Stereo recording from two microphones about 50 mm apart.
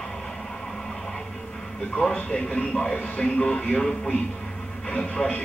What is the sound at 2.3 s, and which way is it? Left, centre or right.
Speech, centre.